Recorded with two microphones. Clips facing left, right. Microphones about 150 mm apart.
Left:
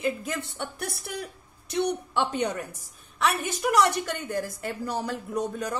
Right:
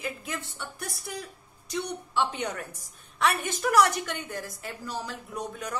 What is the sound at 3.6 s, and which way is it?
Speech, 15° left (ahead or behind).